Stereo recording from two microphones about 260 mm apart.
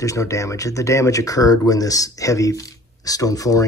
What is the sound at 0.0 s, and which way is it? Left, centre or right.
Speech, centre.